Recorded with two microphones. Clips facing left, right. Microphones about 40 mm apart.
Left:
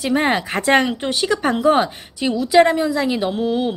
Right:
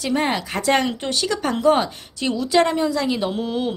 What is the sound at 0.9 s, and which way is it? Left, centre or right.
A woman's voice, centre.